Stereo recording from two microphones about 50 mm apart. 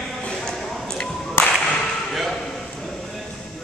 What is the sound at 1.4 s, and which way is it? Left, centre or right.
Whip, left.